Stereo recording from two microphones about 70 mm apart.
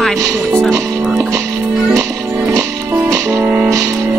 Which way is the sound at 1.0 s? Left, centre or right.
Centre.